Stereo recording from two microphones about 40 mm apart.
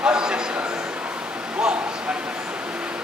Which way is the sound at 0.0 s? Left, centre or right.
Centre.